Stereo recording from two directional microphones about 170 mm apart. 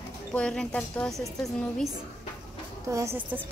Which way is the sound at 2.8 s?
20° right (ahead or behind).